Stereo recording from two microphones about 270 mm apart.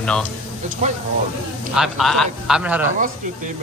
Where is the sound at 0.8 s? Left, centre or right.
Right.